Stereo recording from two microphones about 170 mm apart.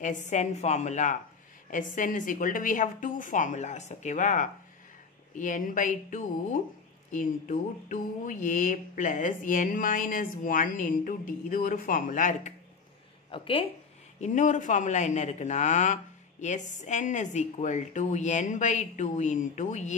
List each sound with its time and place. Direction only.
0.0 s speech: 45° left (ahead or behind)
13.3 s speech: 30° left (ahead or behind)
14.2 s speech: 45° left (ahead or behind)